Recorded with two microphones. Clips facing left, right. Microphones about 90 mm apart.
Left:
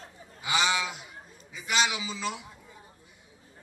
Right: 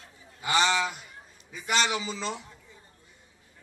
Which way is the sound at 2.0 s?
15° left (ahead or behind).